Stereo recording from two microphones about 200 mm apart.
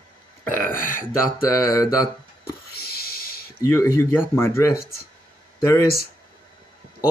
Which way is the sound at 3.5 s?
15° left (ahead or behind).